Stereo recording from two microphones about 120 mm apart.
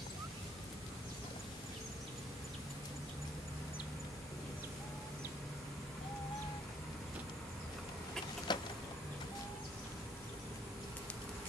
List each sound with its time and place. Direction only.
8.5 s vehicle: 40° left (ahead or behind)